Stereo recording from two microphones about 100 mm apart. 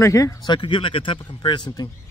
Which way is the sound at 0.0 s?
30° left (ahead or behind).